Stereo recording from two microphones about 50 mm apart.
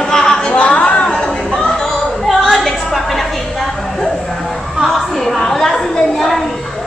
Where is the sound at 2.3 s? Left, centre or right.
Centre.